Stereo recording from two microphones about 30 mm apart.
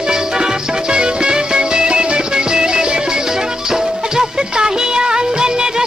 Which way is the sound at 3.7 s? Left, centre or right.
Centre.